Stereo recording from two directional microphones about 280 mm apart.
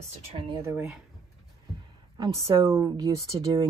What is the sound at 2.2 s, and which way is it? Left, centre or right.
Speech, centre.